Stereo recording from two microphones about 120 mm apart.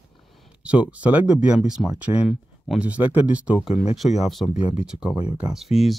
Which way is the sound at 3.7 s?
65° left (ahead or behind).